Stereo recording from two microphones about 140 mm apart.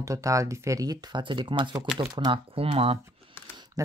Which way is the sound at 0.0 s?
20° right (ahead or behind).